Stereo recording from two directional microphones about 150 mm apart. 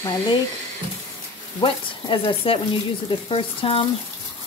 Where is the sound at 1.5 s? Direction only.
35° left (ahead or behind).